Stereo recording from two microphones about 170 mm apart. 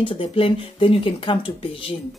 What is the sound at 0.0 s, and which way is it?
Speech, 30° left (ahead or behind).